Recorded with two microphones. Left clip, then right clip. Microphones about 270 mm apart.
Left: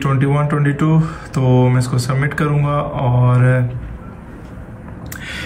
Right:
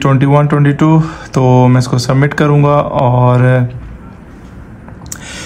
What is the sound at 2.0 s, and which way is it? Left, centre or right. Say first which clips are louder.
Speech: right 8 dB; centre.